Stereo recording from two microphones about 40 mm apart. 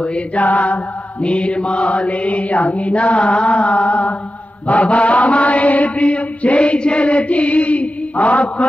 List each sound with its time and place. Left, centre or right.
0.4 s mantra: left
1.2 s mantra: left